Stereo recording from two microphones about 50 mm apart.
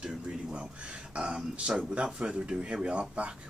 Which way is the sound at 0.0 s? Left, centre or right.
Centre.